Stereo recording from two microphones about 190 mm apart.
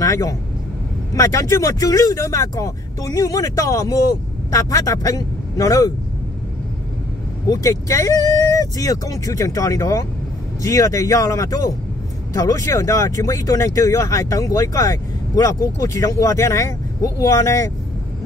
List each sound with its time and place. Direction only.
0.0 s speech: 15° left (ahead or behind)
7.4 s speech: 20° left (ahead or behind)